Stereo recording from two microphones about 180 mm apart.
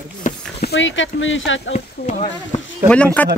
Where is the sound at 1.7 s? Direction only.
35° left (ahead or behind).